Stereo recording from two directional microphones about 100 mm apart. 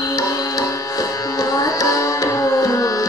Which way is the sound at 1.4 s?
35° left (ahead or behind).